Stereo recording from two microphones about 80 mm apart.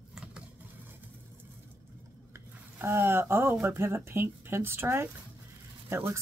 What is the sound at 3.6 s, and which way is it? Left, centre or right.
Speech, right.